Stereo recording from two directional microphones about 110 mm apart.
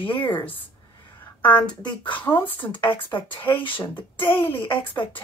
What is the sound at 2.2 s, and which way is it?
Speech, 20° left (ahead or behind).